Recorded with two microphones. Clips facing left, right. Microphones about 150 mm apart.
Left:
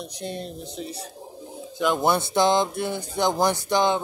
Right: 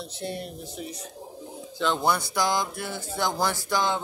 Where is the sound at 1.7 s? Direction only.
15° left (ahead or behind).